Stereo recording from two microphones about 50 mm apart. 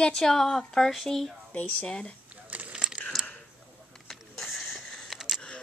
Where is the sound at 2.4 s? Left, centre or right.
Right.